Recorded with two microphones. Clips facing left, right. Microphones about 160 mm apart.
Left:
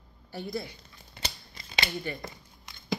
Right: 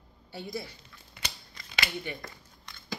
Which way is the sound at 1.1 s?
30° left (ahead or behind).